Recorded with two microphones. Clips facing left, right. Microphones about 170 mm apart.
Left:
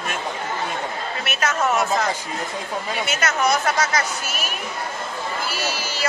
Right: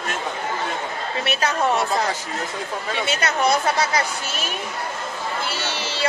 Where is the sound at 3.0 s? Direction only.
30° right (ahead or behind).